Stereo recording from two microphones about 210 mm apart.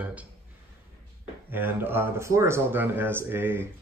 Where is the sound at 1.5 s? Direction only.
10° right (ahead or behind).